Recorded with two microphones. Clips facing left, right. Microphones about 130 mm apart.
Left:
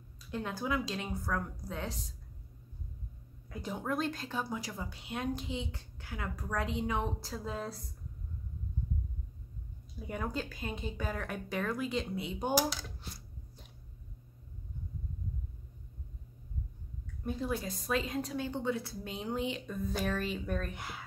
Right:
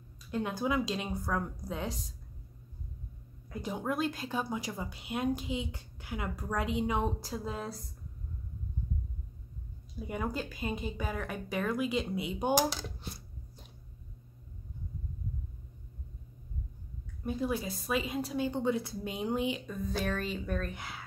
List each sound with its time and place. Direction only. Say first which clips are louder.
0.3 s a woman's voice: right 3 dB; 15° right (ahead or behind)
3.4 s a woman's voice: right 2 dB; 10° right (ahead or behind)
9.9 s a woman's voice: right 2 dB; 5° right (ahead or behind)
17.2 s a woman's voice: right 2 dB; 5° right (ahead or behind)